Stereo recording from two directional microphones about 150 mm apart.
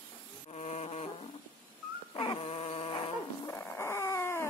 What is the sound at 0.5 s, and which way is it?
Insect, 50° left (ahead or behind).